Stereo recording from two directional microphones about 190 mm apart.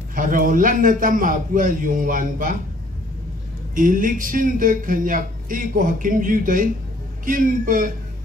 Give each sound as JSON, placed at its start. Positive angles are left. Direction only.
{"t": 0.1, "sound": "speech", "side_deg": -45}
{"t": 3.7, "sound": "speech", "side_deg": -45}